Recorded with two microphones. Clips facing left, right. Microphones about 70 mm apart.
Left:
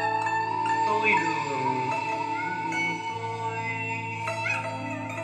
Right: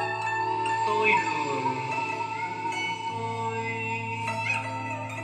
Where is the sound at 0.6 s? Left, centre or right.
Left.